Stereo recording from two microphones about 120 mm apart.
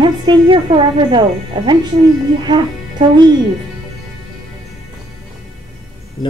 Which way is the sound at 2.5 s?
40° right (ahead or behind).